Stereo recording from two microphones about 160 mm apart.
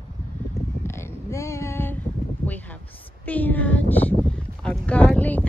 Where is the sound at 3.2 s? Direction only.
10° left (ahead or behind).